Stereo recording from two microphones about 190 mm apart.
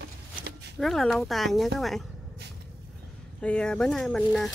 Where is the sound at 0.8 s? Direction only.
Centre (ahead or behind).